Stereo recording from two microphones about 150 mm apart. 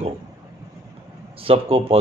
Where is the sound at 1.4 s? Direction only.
40° right (ahead or behind).